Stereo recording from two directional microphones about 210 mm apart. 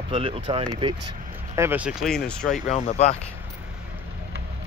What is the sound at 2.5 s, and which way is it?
Speech, 30° left (ahead or behind).